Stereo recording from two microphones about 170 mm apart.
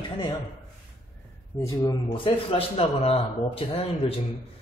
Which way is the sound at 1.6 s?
20° left (ahead or behind).